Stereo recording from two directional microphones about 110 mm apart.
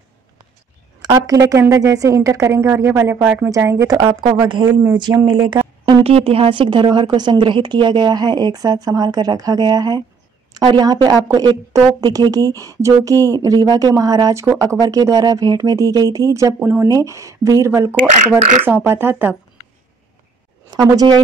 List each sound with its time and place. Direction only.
1.0 s a woman's voice: 35° right (ahead or behind)
4.5 s a woman's voice: 45° right (ahead or behind); by 19.3 s 20° right (ahead or behind)
20.7 s a woman's voice: 35° right (ahead or behind)